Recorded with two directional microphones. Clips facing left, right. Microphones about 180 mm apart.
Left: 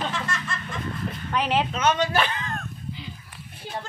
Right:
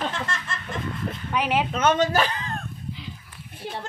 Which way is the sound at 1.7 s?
50° right (ahead or behind).